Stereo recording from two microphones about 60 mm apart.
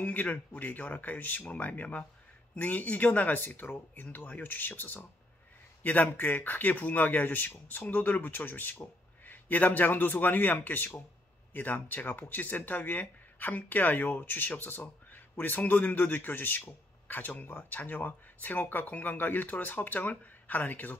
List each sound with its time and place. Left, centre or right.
0.0 s speech: left